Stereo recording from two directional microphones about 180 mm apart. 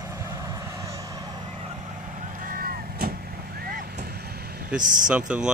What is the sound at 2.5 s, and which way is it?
Vehicle, 55° right (ahead or behind).